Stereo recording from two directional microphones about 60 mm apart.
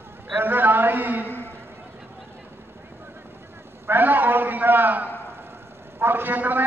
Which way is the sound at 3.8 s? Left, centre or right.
Right.